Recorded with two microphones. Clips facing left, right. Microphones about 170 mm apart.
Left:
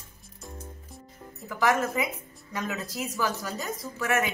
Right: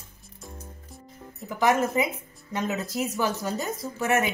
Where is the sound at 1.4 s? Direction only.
20° right (ahead or behind).